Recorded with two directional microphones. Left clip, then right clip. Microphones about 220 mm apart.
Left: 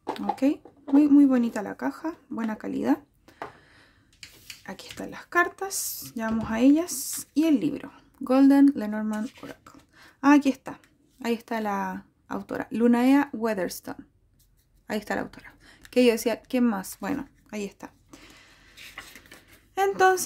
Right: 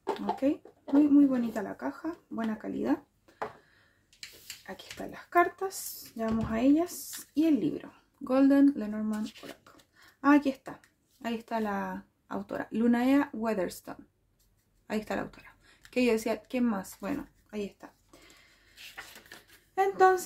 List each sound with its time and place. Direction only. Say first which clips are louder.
0.1 s a sound: left 3 dB; 45° left (ahead or behind)
1.0 s speech: left 5 dB; 45° left (ahead or behind)
4.6 s speech: left 4 dB; 45° left (ahead or behind)
10.2 s speech: left 4 dB; 45° left (ahead or behind)
19.7 s speech: left 3 dB; 45° left (ahead or behind)